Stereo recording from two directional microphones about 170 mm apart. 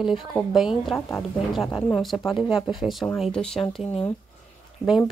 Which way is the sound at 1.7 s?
25° left (ahead or behind).